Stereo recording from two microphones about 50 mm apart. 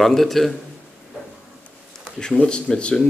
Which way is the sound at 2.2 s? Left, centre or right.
Centre.